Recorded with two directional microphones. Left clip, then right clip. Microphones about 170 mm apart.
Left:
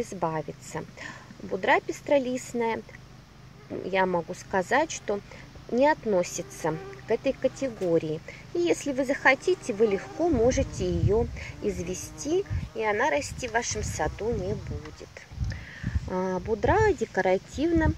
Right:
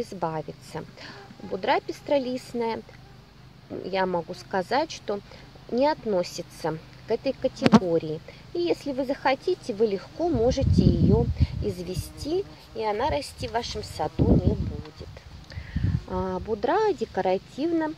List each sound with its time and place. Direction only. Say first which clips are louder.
0.0 s speech: even; 10° right (ahead or behind)
11.9 s a woman's voice: even; 60° right (ahead or behind)
12.4 s speech: even; 10° right (ahead or behind)
15.7 s speech: right 1 dB; 5° left (ahead or behind)